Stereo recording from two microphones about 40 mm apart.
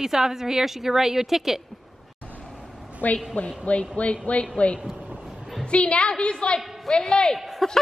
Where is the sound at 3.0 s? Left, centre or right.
Left.